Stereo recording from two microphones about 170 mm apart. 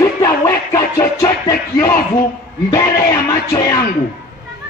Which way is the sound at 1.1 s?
20° left (ahead or behind).